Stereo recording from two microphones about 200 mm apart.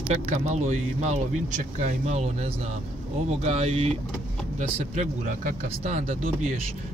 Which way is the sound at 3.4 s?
30° right (ahead or behind).